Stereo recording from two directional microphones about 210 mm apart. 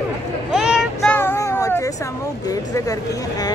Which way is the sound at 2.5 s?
15° left (ahead or behind).